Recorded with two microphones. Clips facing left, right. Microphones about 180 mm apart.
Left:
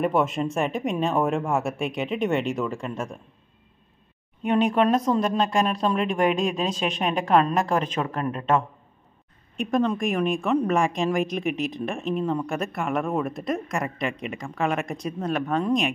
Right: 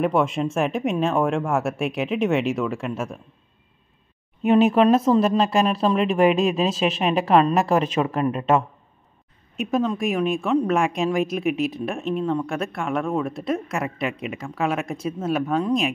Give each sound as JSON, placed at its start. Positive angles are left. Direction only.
{"t": 0.0, "sound": "speech", "side_deg": 0}
{"t": 4.4, "sound": "speech", "side_deg": -5}